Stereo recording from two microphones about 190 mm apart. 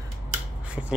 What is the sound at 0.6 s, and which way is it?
Scissors, 5° right (ahead or behind).